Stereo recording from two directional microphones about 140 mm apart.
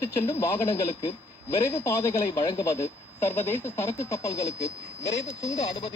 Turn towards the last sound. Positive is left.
turn(degrees=55)  # may be behind; listen again after turning